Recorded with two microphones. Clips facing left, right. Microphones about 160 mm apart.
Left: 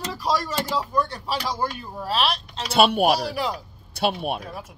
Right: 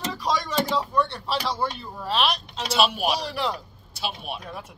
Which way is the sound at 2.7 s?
55° left (ahead or behind).